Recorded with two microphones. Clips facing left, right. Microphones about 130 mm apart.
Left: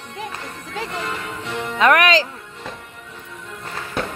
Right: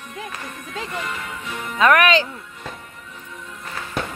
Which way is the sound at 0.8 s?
30° left (ahead or behind).